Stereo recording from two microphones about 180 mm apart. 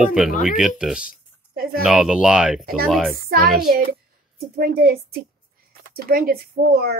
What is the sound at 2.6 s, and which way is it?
Speech, 55° right (ahead or behind).